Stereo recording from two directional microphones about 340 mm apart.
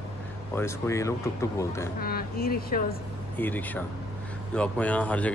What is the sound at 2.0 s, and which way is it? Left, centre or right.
A woman's voice, left.